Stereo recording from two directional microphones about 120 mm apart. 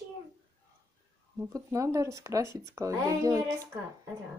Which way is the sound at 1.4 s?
25° right (ahead or behind).